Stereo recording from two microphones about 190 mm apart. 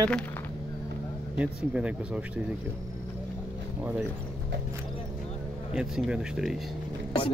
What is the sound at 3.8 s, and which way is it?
Speech, 10° right (ahead or behind).